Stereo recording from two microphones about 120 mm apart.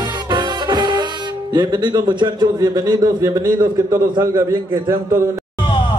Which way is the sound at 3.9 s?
25° right (ahead or behind).